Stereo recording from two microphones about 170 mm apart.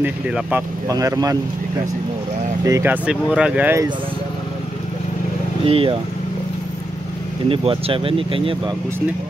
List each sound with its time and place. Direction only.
0.0 s speech: 10° right (ahead or behind)
0.9 s speech: 20° right (ahead or behind)
2.6 s speech: 15° right (ahead or behind)
5.7 s speech: 35° right (ahead or behind)
7.4 s speech: 30° right (ahead or behind)